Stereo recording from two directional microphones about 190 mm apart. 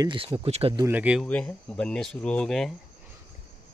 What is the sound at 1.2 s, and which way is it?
Speech, 5° left (ahead or behind).